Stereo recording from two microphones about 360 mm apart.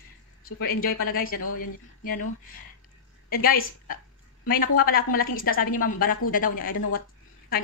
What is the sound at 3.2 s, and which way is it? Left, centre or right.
A woman's voice, left.